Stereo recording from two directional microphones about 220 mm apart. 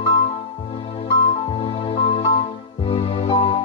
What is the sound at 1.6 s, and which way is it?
Music, 25° left (ahead or behind).